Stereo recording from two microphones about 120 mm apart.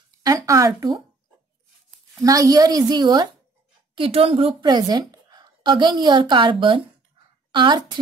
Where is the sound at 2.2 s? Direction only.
30° right (ahead or behind).